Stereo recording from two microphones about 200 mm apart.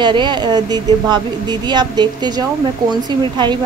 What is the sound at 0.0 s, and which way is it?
A woman's voice, 25° right (ahead or behind).